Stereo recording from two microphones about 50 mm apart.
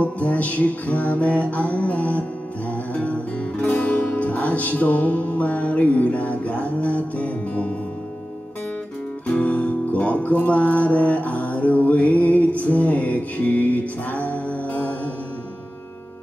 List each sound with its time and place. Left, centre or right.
0.0 s music: left
9.3 s music: left